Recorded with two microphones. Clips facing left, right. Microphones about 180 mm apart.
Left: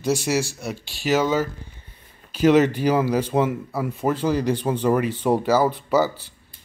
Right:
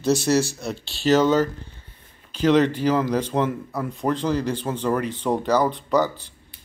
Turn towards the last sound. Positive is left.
turn(degrees=5)  # may be behind; listen again after turning